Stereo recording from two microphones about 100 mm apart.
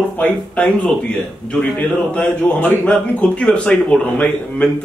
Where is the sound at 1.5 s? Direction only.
15° left (ahead or behind).